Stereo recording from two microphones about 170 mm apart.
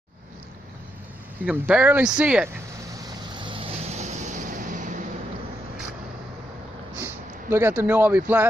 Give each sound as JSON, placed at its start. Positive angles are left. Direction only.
{"t": 1.4, "sound": "speech", "side_deg": -5}
{"t": 2.9, "sound": "vehicle", "side_deg": -25}
{"t": 7.4, "sound": "speech", "side_deg": -15}